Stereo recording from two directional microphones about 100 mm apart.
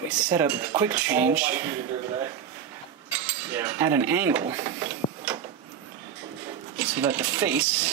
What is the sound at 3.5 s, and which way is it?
Speech, 25° right (ahead or behind).